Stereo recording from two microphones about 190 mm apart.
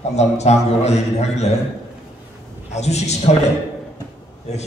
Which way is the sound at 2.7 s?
35° left (ahead or behind).